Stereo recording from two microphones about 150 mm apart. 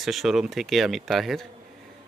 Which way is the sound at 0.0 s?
Centre (ahead or behind).